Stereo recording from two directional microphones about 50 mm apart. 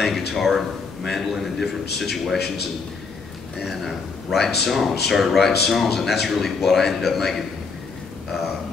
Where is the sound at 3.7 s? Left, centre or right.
Centre.